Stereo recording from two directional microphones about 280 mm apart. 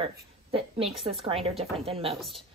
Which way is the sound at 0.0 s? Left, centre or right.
Centre.